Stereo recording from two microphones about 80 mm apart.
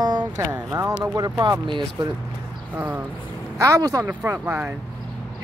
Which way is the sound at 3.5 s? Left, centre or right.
Right.